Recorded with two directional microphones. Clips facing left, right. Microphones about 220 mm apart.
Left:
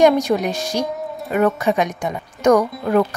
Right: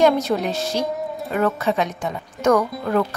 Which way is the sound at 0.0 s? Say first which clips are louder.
Left 3 dB; 15° left (ahead or behind).